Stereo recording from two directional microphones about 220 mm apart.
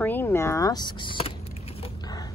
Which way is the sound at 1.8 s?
15° left (ahead or behind).